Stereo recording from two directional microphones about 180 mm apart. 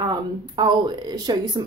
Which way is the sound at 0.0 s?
25° right (ahead or behind).